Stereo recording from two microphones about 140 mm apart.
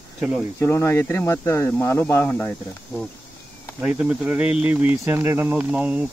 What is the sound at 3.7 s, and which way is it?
Speech, 5° right (ahead or behind).